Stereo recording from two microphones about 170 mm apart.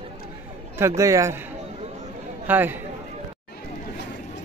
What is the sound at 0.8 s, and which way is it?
Speech, 20° right (ahead or behind).